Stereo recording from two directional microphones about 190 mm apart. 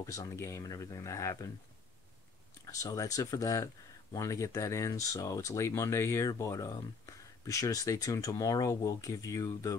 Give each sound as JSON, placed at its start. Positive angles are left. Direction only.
{"t": 0.0, "sound": "speech", "side_deg": 15}
{"t": 2.6, "sound": "speech", "side_deg": 15}